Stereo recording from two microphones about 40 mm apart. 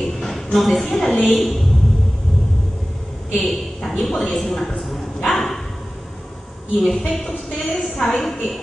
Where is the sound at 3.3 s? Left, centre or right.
Centre.